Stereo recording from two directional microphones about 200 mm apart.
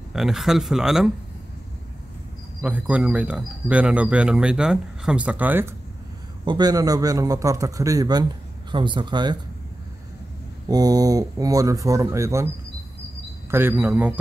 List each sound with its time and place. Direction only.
0.1 s speech: centre (ahead or behind)
2.6 s speech: 5° right (ahead or behind)
6.4 s a man's voice: 20° right (ahead or behind)
10.7 s a man's voice: 20° right (ahead or behind)
13.5 s a man's voice: 10° right (ahead or behind)